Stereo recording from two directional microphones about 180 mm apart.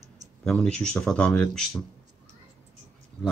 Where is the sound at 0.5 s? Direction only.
5° left (ahead or behind).